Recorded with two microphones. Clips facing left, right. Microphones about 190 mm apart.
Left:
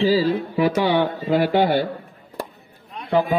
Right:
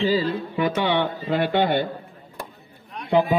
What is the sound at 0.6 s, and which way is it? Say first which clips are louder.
Speech: left 3 dB; 35° left (ahead or behind).